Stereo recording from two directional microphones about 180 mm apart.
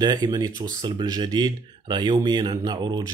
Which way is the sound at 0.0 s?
25° right (ahead or behind).